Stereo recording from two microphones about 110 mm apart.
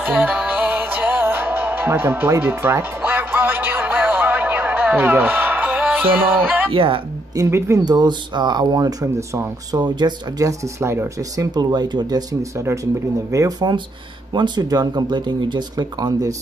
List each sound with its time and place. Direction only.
0.0 s music: 15° right (ahead or behind)
6.7 s speech: 55° right (ahead or behind)
7.3 s speech: 25° right (ahead or behind)
7.8 s speech: 40° right (ahead or behind)
9.8 s speech: 40° right (ahead or behind)
10.8 s speech: 25° right (ahead or behind)
11.5 s speech: 40° right (ahead or behind)
14.3 s speech: 40° right (ahead or behind)